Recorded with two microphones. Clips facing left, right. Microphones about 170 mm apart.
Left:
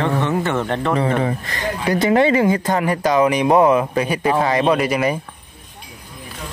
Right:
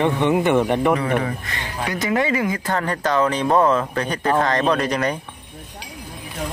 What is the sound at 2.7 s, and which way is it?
Speech, 10° left (ahead or behind).